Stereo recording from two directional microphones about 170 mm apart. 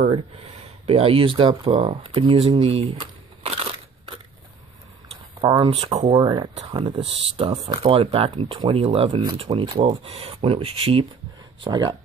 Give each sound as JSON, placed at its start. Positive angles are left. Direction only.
{"t": 0.8, "sound": "speech", "side_deg": -35}
{"t": 5.4, "sound": "speech", "side_deg": -30}